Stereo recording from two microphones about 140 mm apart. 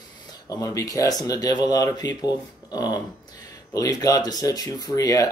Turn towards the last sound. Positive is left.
turn(degrees=25)  # may be behind; listen again after turning